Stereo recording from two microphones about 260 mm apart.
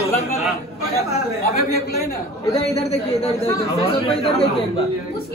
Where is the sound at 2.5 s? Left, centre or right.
Left.